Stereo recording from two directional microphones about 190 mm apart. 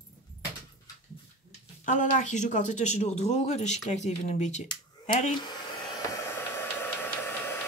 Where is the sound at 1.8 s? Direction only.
40° left (ahead or behind).